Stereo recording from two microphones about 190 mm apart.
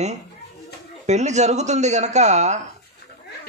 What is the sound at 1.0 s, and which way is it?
Speech, 35° right (ahead or behind).